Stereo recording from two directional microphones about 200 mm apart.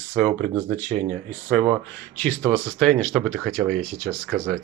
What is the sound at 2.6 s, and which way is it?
Speech, 5° left (ahead or behind).